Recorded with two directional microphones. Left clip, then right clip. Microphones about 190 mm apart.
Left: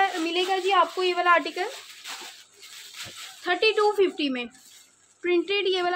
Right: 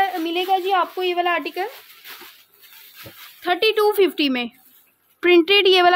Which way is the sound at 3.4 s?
60° right (ahead or behind).